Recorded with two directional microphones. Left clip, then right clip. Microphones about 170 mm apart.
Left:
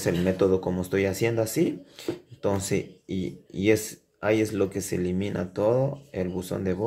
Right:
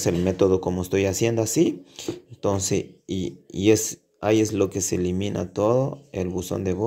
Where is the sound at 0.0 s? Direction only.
30° right (ahead or behind).